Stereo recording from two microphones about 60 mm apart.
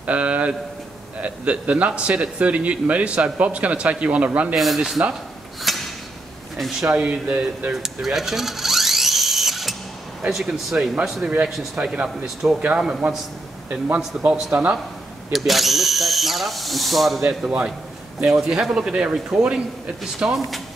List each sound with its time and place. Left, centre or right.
0.0 s a man's voice: right
4.6 s speech: centre
5.7 s a sound: centre
6.6 s speech: centre
6.9 s a man's voice: right
7.7 s dental drill: centre
10.3 s speech: centre
11.8 s speech: centre
13.9 s speech: centre
15.3 s speech: centre
17.3 s speech: centre
20.2 s speech: centre